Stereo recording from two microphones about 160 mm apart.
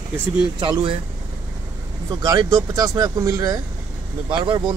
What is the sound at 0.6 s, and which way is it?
Speech, 30° right (ahead or behind).